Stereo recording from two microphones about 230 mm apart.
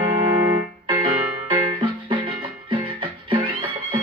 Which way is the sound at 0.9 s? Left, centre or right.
Right.